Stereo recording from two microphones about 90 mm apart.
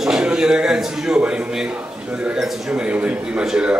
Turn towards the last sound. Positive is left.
turn(degrees=-10)  # may be behind; listen again after turning